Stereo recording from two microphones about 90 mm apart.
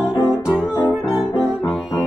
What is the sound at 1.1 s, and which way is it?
Music, centre (ahead or behind).